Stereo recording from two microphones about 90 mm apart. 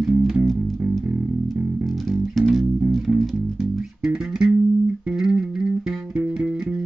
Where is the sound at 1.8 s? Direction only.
Centre (ahead or behind).